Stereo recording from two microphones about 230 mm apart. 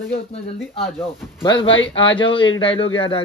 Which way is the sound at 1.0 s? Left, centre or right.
Left.